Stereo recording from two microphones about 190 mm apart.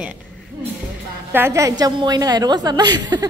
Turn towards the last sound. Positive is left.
turn(degrees=-20)  # may be behind; listen again after turning